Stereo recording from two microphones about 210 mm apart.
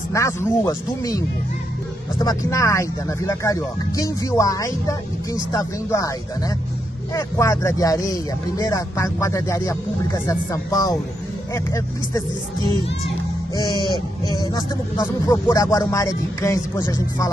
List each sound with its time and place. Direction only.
0.1 s speech: 15° left (ahead or behind)
7.2 s speech: 15° left (ahead or behind)
14.2 s speech: 15° left (ahead or behind)